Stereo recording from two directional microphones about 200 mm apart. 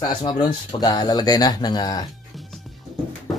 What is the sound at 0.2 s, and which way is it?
Speech, 20° left (ahead or behind).